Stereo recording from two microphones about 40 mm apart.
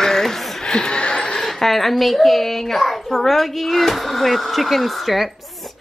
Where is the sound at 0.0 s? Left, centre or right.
Centre.